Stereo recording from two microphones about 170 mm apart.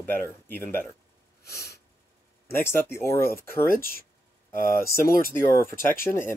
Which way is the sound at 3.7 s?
60° left (ahead or behind).